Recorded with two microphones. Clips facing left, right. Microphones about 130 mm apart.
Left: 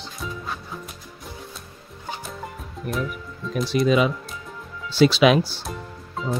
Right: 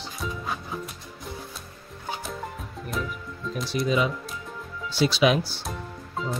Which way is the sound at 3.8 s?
80° left.